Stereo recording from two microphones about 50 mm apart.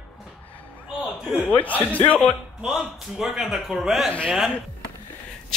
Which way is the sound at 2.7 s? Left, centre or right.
Centre.